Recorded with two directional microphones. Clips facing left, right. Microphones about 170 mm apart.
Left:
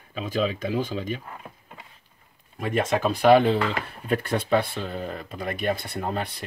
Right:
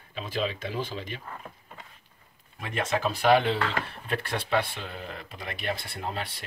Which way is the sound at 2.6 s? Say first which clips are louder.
Left 5 dB; 50° left (ahead or behind).